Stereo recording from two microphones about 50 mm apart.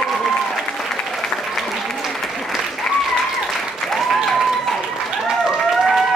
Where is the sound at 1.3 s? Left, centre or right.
Left.